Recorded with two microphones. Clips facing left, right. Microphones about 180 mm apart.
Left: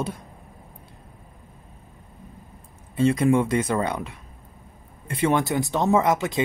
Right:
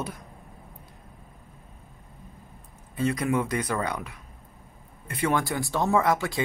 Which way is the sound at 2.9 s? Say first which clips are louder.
Left 6 dB; 25° left (ahead or behind).